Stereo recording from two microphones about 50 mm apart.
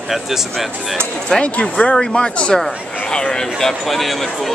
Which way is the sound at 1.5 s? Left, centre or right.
Left.